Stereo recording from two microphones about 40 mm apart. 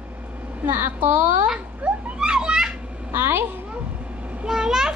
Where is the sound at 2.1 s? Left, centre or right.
Right.